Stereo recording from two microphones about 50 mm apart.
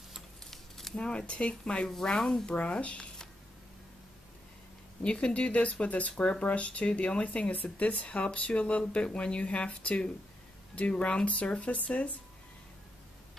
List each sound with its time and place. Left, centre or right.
0.5 s a sound: centre
0.9 s speech: left
1.9 s speech: centre
2.5 s speech: left
5.0 s speech: left